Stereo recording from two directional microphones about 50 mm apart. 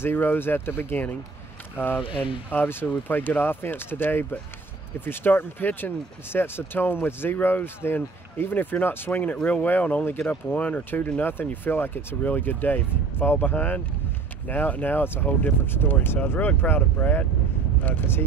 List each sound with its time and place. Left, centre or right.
0.0 s speech: left
2.2 s speech: left
9.2 s speech: left
17.0 s speech: left
17.8 s speech: left